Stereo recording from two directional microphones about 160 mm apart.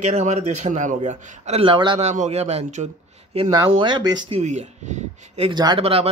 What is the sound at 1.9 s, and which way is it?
Speech, 45° right (ahead or behind).